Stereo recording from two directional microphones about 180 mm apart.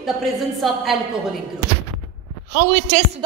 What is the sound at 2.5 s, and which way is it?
Speech, 55° right (ahead or behind).